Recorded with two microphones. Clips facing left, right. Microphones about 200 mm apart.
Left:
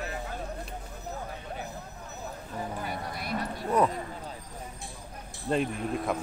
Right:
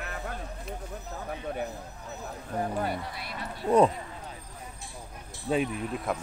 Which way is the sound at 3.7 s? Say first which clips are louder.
Right 5 dB; 15° right (ahead or behind).